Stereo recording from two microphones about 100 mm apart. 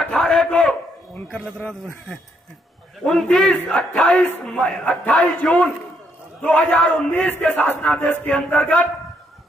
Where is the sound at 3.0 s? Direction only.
5° left (ahead or behind).